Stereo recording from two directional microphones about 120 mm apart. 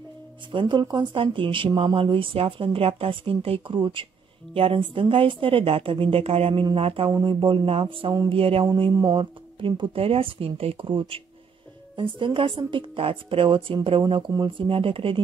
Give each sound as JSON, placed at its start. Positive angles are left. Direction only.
{"t": 0.5, "sound": "speech", "side_deg": -40}
{"t": 7.1, "sound": "speech", "side_deg": -35}
{"t": 8.6, "sound": "speech", "side_deg": -40}